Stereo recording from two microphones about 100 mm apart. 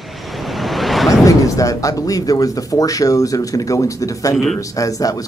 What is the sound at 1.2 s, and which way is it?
Speech, 35° left (ahead or behind).